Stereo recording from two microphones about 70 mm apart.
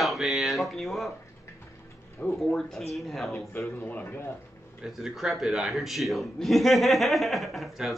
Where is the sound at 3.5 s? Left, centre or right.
Left.